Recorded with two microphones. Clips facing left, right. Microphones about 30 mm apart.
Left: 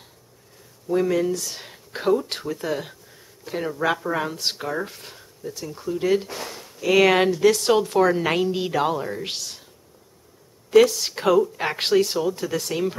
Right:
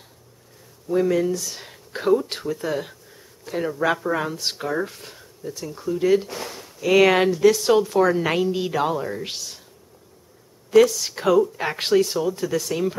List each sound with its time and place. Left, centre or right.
0.8 s speech: centre
10.7 s speech: centre
12.4 s speech: left